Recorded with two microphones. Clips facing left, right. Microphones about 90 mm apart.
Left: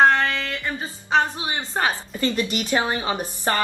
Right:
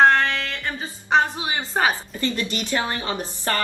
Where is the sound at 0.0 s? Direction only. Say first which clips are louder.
Right 1 dB; centre (ahead or behind).